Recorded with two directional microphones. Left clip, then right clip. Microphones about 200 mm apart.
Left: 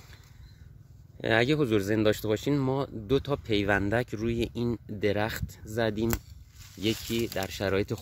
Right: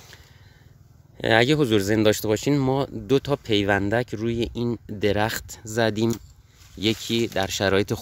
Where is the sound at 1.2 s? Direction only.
30° right (ahead or behind).